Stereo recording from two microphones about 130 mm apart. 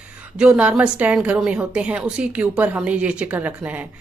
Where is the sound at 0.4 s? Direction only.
10° right (ahead or behind).